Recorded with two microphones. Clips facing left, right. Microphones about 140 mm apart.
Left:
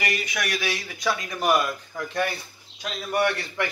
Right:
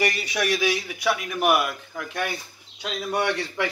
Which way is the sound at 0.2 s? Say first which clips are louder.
Right 4 dB; 30° right (ahead or behind).